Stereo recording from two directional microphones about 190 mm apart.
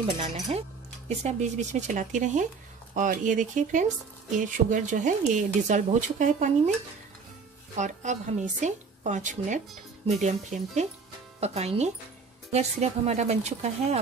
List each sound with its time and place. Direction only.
0.0 s cutlery: 30° right (ahead or behind)
2.9 s speech: 45° right (ahead or behind)
4.3 s cutlery: 45° right (ahead or behind)
7.7 s cutlery: 40° right (ahead or behind)